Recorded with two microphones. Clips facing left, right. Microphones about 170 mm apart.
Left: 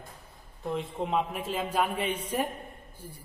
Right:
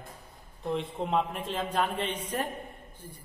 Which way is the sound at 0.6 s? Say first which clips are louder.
Even; centre (ahead or behind).